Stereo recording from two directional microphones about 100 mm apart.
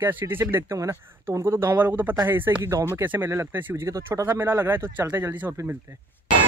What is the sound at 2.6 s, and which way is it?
Speech, 30° right (ahead or behind).